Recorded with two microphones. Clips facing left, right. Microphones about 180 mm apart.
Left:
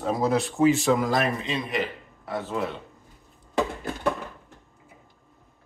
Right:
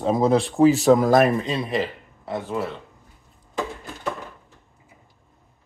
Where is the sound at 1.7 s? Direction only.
30° right (ahead or behind).